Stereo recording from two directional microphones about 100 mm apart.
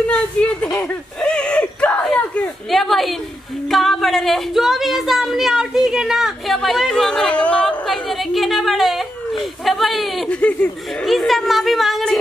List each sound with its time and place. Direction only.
0.1 s dog: 10° left (ahead or behind)
2.7 s speech: centre (ahead or behind)
10.3 s speech: 10° left (ahead or behind)
11.1 s speech: centre (ahead or behind)